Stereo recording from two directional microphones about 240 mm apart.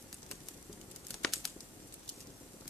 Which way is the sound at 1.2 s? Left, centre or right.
Centre.